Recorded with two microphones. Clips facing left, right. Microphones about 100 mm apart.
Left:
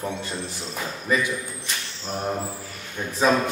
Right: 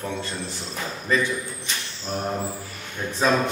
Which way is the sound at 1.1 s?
10° left (ahead or behind).